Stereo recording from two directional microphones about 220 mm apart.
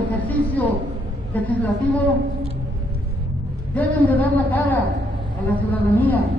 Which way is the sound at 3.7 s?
5° left (ahead or behind).